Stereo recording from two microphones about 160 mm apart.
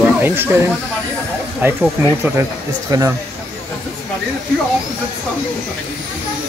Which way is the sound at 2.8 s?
20° right (ahead or behind).